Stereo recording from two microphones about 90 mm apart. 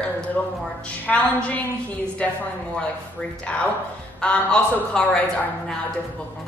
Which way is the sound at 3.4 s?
15° left (ahead or behind).